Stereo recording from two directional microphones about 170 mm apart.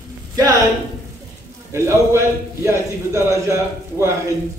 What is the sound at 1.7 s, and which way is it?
A man's voice, 15° right (ahead or behind).